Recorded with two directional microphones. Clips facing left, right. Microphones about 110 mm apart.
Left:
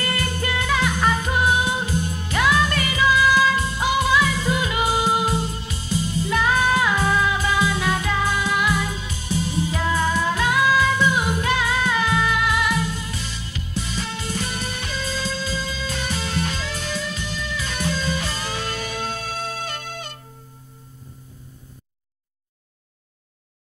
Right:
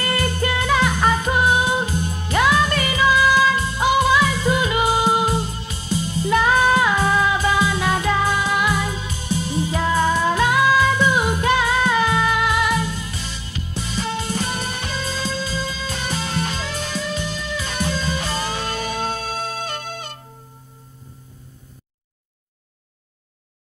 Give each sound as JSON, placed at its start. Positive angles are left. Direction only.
{"t": 0.1, "sound": "music", "side_deg": -30}
{"t": 6.3, "sound": "music", "side_deg": -35}